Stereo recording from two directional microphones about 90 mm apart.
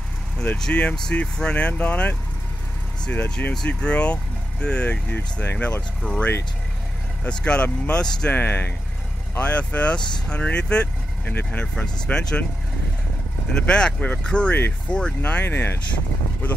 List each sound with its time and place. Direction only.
0.4 s speech: 10° left (ahead or behind)
13.6 s speech: 10° left (ahead or behind)
15.4 s speech: 25° left (ahead or behind)